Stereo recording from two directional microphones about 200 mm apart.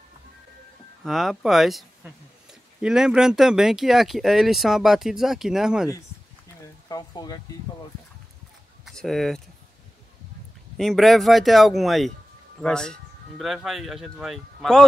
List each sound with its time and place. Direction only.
1.0 s speech: centre (ahead or behind)
6.9 s speech: 20° left (ahead or behind)
8.8 s speech: centre (ahead or behind)
10.8 s speech: centre (ahead or behind)